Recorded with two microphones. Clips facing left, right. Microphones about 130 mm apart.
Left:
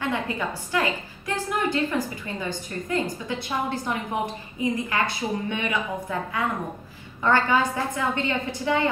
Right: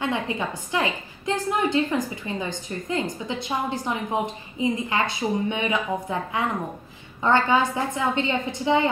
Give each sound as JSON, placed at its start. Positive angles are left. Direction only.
{"t": 0.0, "sound": "a woman's voice", "side_deg": -20}